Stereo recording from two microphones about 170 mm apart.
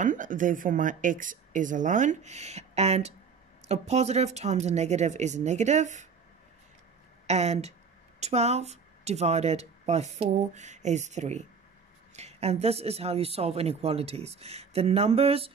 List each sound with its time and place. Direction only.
0.0 s speech: 50° right (ahead or behind)
7.2 s speech: 40° right (ahead or behind)